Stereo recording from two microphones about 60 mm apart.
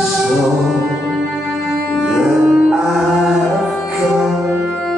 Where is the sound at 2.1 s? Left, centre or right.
Centre.